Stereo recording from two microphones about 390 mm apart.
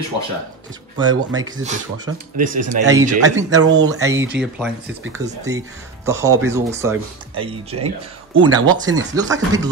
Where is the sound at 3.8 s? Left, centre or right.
Centre.